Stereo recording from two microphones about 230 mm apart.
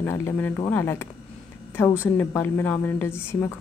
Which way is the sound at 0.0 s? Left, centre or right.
Centre.